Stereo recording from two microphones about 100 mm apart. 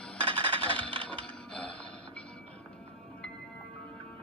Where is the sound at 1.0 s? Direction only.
10° left (ahead or behind).